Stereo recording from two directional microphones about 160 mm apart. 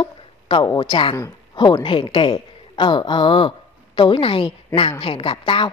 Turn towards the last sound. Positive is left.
turn(degrees=30)  # may be behind; listen again after turning